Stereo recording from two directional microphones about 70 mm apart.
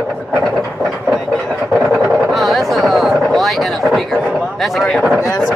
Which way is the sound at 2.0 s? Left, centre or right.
Centre.